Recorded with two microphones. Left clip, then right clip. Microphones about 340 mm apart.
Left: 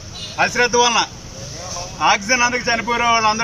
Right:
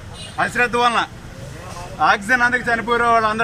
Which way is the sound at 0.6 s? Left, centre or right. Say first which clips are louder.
Left 1 dB; centre.